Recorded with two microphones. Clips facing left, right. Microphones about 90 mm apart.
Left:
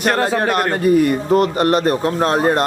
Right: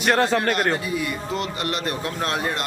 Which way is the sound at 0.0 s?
Centre (ahead or behind).